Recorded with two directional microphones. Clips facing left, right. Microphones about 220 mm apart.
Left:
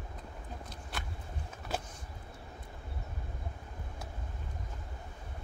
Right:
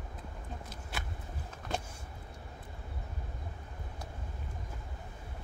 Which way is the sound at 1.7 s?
5° left (ahead or behind).